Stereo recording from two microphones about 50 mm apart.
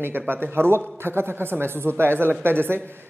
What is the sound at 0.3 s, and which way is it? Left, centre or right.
Speech, right.